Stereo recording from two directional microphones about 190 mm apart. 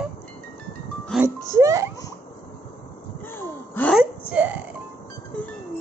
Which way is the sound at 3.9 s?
5° right (ahead or behind).